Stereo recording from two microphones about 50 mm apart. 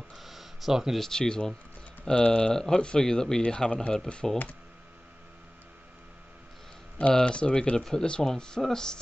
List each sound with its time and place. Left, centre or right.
0.1 s a sound: centre
0.9 s speech: centre
7.0 s speech: centre